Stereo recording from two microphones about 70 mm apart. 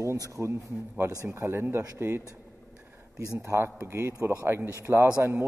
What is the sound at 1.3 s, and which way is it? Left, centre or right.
Speech, right.